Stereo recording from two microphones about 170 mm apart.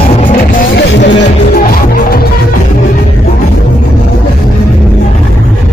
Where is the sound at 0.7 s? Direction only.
90° left; by 2.2 s 60° left (ahead or behind).